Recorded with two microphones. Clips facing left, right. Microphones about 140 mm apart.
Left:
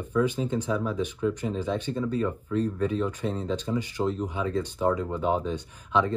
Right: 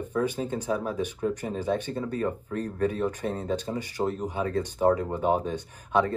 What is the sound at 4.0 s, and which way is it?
Speech, 30° right (ahead or behind).